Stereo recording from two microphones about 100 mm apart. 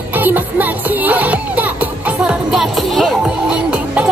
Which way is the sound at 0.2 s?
15° right (ahead or behind).